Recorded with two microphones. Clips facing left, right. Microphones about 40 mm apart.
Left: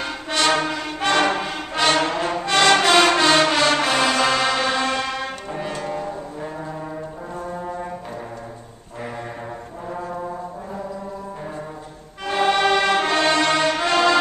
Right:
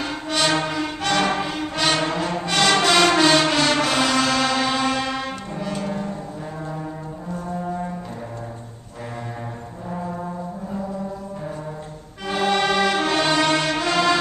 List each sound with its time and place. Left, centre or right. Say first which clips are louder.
0.0 s music: left 1 dB; centre
1.0 s music: left 3 dB; centre
2.0 s music: left 2 dB; centre
12.3 s music: left 2 dB; centre